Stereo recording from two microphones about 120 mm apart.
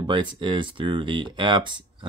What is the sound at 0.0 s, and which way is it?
Speech, 40° right (ahead or behind).